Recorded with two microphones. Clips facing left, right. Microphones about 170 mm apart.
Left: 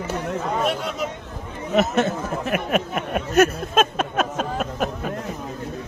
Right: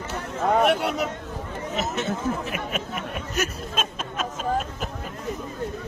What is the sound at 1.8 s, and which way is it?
Speech, 55° left (ahead or behind).